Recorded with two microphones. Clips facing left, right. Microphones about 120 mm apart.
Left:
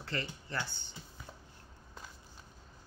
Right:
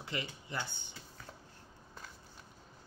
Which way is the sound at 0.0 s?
15° right (ahead or behind).